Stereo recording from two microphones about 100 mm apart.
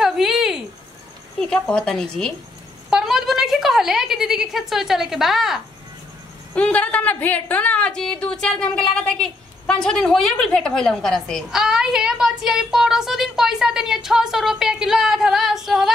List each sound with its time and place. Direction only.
0.0 s a sound: 5° right (ahead or behind)
1.4 s a woman's voice: 10° left (ahead or behind)
2.9 s a woman's voice: 5° right (ahead or behind)
6.5 s a woman's voice: 15° left (ahead or behind); by 15.9 s centre (ahead or behind)